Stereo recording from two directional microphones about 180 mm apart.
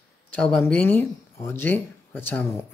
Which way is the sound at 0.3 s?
5° left (ahead or behind).